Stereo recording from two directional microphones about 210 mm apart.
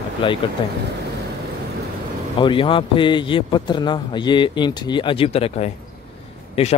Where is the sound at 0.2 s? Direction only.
25° left (ahead or behind).